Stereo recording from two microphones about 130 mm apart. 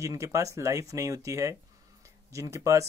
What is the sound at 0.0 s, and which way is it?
Speech, 25° right (ahead or behind).